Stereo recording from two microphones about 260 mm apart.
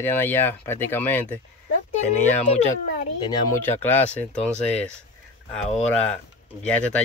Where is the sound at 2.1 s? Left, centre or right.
Left.